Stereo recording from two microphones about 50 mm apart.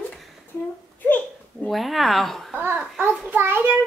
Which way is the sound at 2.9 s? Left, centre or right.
Right.